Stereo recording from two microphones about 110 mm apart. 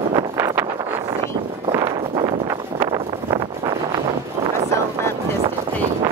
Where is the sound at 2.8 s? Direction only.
35° right (ahead or behind).